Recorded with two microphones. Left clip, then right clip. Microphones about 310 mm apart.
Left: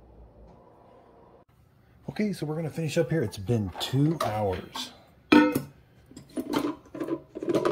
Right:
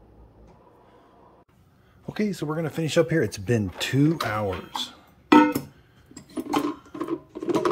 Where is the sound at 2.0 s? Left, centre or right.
Centre.